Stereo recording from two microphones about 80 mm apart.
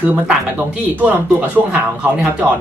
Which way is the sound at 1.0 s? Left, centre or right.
Centre.